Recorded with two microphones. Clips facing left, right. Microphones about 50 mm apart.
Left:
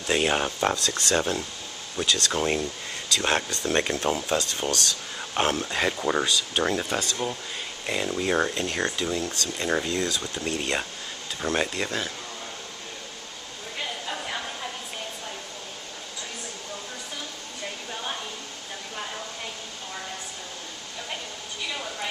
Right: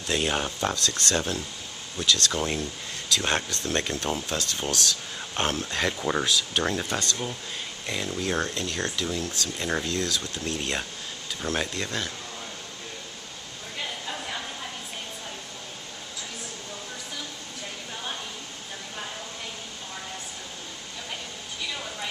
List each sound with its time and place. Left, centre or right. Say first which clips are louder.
0.1 s speech: left 3 dB; centre
3.1 s speech: left 1 dB; centre
3.6 s speech: left 3 dB; left
4.6 s speech: left 1 dB; centre
5.3 s speech: left 3 dB; centre
8.6 s speech: left 3 dB; left
9.3 s speech: left 2 dB; centre